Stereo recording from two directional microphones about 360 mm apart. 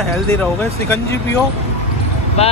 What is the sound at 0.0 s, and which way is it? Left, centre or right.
Speech, centre.